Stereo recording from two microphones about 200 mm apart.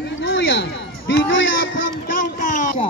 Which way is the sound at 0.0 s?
70° left (ahead or behind).